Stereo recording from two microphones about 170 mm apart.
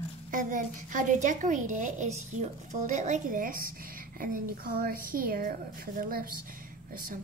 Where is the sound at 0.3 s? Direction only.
50° right (ahead or behind).